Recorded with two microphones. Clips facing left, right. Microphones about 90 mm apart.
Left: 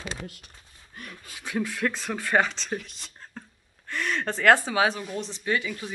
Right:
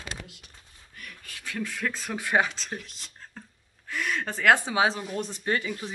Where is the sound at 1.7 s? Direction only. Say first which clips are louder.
Left 3 dB; centre (ahead or behind).